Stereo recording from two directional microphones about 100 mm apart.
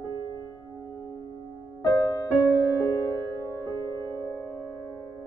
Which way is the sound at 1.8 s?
40° left (ahead or behind).